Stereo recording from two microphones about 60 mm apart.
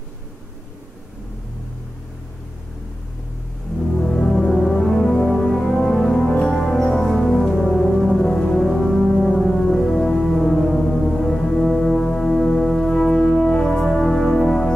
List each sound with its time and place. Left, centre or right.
4.0 s music: centre
4.7 s music: centre